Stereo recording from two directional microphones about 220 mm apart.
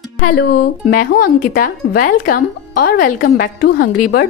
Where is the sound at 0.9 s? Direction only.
40° left (ahead or behind).